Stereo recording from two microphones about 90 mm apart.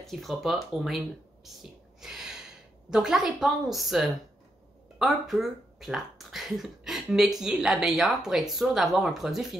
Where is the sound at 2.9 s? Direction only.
5° right (ahead or behind).